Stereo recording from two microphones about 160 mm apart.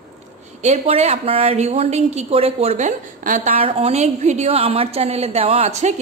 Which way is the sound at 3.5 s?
40° right (ahead or behind).